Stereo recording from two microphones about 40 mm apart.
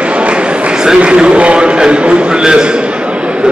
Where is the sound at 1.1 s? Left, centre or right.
Right.